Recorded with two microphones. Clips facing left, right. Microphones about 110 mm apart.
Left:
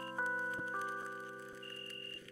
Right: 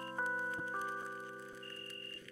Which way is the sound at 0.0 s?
Centre (ahead or behind).